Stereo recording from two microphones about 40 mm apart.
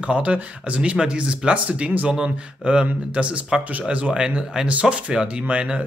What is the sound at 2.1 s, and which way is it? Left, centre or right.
Speech, centre.